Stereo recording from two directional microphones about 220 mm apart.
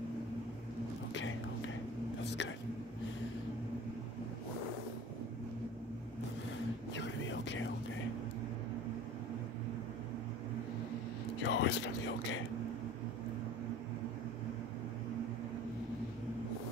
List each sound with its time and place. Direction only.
2.2 s a sound: 55° left (ahead or behind)
6.9 s vehicle: 55° left (ahead or behind)
11.4 s speech: 55° left (ahead or behind)